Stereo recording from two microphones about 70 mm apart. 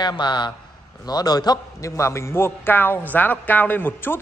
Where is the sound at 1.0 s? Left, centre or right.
Left.